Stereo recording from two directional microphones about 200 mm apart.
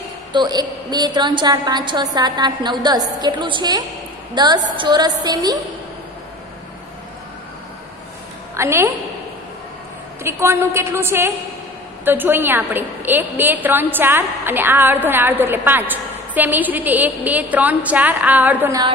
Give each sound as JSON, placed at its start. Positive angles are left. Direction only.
{"t": 0.3, "sound": "a woman's voice", "side_deg": -20}
{"t": 8.5, "sound": "a woman's voice", "side_deg": -15}
{"t": 10.2, "sound": "a woman's voice", "side_deg": -15}